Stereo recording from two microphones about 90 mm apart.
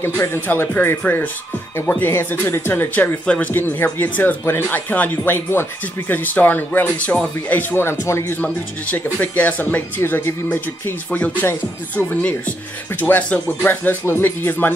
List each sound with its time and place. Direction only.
0.0 s speech: 25° left (ahead or behind)